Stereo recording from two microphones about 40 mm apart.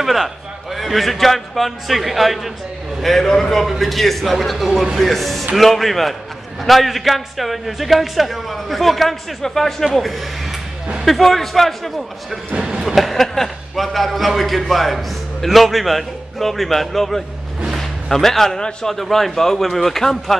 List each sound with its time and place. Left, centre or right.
0.0 s a man's voice: centre
12.5 s speech: right
12.8 s a man's voice: centre
17.7 s music: centre
18.9 s speech: centre